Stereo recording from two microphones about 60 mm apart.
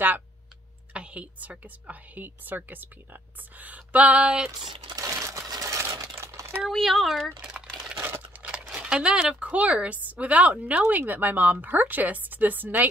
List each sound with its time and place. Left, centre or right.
0.9 s speech: centre
4.2 s speech: centre
4.5 s crumpling: right
6.7 s speech: centre
8.0 s a sound: right
8.4 s crumpling: right
8.6 s speech: centre; by 12.8 s right